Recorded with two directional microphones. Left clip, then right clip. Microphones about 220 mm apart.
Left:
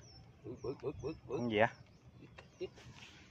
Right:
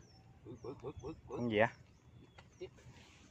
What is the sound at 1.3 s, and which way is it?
Speech, 10° right (ahead or behind).